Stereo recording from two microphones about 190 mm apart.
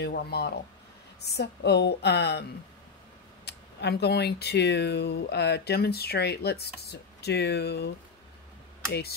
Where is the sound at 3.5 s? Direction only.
60° left (ahead or behind).